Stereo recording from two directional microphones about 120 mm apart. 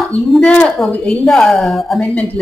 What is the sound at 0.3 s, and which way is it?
A woman's voice, 5° left (ahead or behind).